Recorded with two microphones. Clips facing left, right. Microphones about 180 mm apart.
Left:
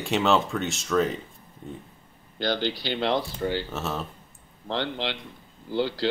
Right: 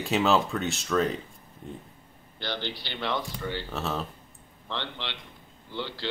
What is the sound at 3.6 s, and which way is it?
Speech, centre (ahead or behind).